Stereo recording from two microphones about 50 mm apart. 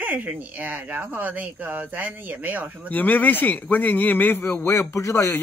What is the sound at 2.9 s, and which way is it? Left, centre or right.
A man's voice, left.